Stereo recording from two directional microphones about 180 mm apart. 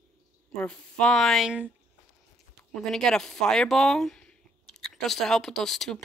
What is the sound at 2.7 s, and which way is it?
Speech, 5° left (ahead or behind).